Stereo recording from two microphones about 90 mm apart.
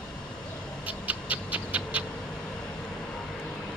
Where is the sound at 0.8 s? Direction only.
15° right (ahead or behind).